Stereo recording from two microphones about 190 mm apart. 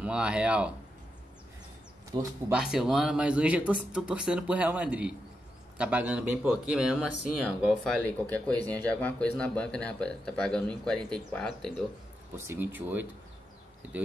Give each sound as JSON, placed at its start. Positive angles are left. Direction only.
{"t": 0.0, "sound": "speech", "side_deg": -5}
{"t": 2.5, "sound": "speech", "side_deg": -5}
{"t": 12.4, "sound": "speech", "side_deg": -10}